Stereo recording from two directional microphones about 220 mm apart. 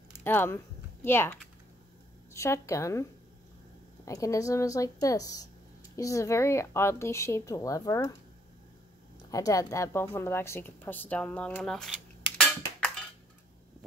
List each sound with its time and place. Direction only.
0.2 s a woman's voice: 10° left (ahead or behind)
9.3 s a woman's voice: 15° left (ahead or behind)